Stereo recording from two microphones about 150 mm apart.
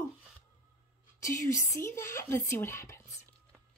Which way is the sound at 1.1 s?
20° left (ahead or behind).